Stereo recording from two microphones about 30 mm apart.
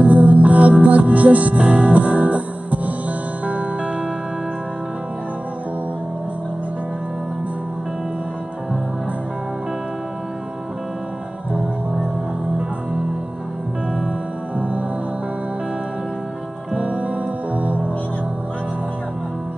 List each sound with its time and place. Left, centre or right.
0.0 s music: right
1.7 s music: right
2.0 s music: right
14.6 s music: right
16.7 s music: right